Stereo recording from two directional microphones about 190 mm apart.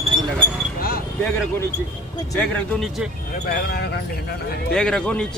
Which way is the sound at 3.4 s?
55° left (ahead or behind).